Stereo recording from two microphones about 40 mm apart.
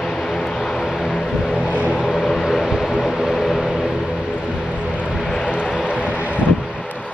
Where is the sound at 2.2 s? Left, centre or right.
Centre.